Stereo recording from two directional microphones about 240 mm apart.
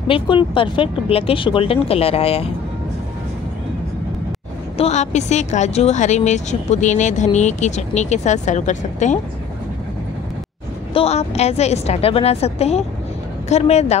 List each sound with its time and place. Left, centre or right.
0.1 s speech: left
4.7 s speech: left
10.9 s speech: left